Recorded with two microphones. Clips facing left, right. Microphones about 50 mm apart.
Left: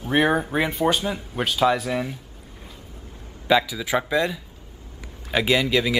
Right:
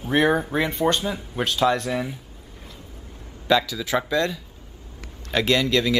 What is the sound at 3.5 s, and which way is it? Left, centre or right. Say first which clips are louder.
Speech: left 1 dB; centre.